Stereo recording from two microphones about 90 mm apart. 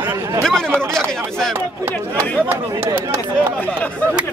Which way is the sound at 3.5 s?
15° left (ahead or behind).